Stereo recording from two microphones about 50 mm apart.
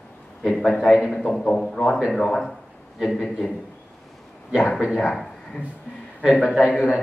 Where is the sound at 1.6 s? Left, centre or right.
Centre.